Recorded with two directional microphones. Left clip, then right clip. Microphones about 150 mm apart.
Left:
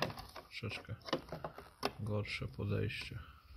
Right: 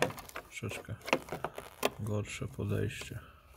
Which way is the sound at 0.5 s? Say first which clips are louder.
Right 2 dB; 25° right (ahead or behind).